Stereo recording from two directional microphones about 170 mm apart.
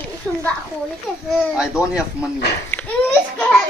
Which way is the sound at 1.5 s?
5° right (ahead or behind).